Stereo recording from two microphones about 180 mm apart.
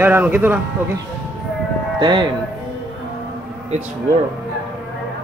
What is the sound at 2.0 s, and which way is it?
Speech, 25° right (ahead or behind).